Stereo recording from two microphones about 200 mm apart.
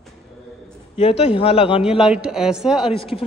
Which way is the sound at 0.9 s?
30° left (ahead or behind).